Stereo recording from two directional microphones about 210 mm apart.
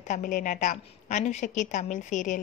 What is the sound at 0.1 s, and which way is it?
A woman's voice, 40° left (ahead or behind).